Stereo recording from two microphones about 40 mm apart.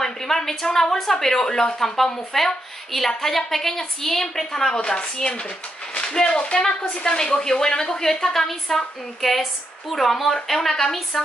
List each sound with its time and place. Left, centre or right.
0.0 s a woman's voice: centre